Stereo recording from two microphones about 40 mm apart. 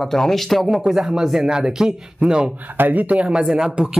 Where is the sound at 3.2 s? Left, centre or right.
Centre.